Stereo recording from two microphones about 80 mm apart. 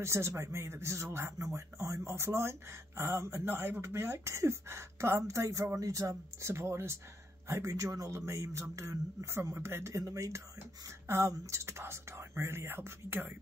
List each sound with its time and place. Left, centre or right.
0.0 s speech: right